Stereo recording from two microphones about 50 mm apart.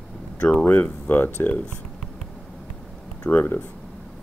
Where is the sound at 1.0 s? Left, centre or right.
Left.